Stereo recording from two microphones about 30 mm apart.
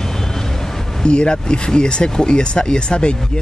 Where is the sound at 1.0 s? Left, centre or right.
Left.